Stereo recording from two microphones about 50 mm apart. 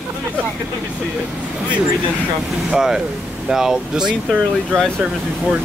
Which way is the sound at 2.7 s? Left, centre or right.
Centre.